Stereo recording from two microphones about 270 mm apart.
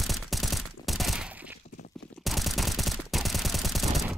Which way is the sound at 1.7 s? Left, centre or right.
Left.